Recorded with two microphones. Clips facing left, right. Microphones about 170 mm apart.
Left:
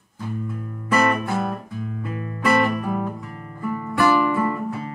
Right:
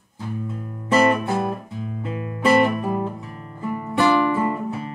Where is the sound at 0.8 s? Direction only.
25° right (ahead or behind).